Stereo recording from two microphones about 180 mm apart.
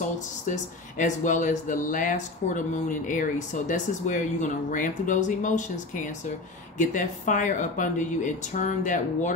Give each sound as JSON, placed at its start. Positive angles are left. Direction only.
{"t": 0.5, "sound": "speech", "side_deg": 45}